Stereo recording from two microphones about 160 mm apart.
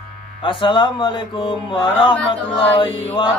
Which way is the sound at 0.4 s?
30° left (ahead or behind).